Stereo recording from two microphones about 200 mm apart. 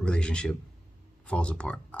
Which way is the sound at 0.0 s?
5° left (ahead or behind).